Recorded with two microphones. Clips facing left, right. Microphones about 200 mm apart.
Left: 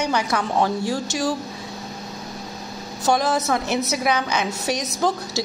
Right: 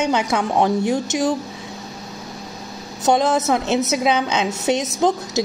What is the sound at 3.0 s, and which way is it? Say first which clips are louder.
A woman's voice: right 3 dB; 20° right (ahead or behind).